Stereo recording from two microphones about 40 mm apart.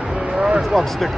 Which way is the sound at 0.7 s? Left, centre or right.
Centre.